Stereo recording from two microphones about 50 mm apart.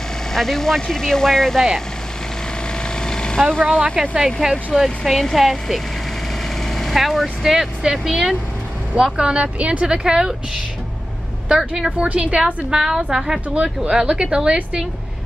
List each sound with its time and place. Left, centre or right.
0.3 s speech: centre
3.0 s vehicle: centre
4.4 s speech: centre
4.8 s speech: centre
6.9 s a woman's voice: centre
8.9 s speech: centre
11.4 s a woman's voice: centre
12.1 s speech: right
12.7 s a woman's voice: centre